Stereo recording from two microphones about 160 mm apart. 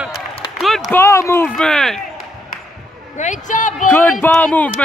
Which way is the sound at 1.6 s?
5° left (ahead or behind).